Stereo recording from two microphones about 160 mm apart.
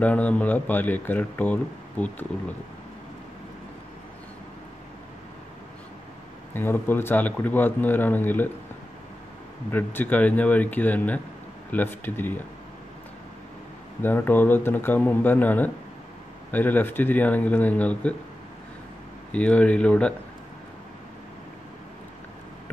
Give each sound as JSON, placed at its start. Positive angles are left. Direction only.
{"t": 0.0, "sound": "a man's voice", "side_deg": 10}
{"t": 6.5, "sound": "a man's voice", "side_deg": 15}
{"t": 9.7, "sound": "a man's voice", "side_deg": 10}
{"t": 14.0, "sound": "a man's voice", "side_deg": 15}
{"t": 19.3, "sound": "a man's voice", "side_deg": 10}